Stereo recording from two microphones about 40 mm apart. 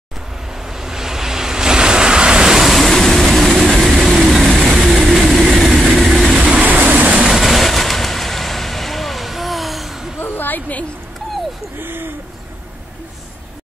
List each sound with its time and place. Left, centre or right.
0.7 s vehicle: centre
2.6 s waves: centre
3.3 s vehicle: centre
4.7 s train: centre
6.8 s vehicle: right
7.2 s vehicle: centre
10.2 s a sound: left
11.8 s a sound: right